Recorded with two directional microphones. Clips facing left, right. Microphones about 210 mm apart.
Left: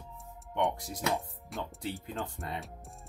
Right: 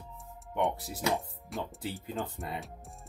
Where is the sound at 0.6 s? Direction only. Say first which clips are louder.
Even; 5° right (ahead or behind).